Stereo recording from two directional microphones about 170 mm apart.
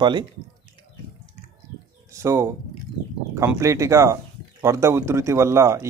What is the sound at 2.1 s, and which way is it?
Speech, 15° right (ahead or behind).